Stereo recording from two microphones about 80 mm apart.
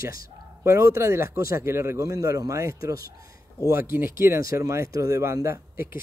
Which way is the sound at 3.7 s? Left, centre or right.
Right.